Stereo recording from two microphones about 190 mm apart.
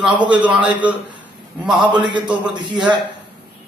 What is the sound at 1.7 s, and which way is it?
Speech, 25° right (ahead or behind).